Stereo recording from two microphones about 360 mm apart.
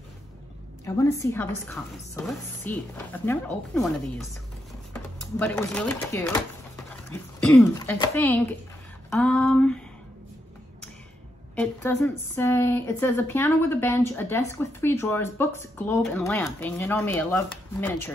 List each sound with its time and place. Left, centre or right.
1.1 s speech: centre
5.4 s speech: centre
11.5 s speech: centre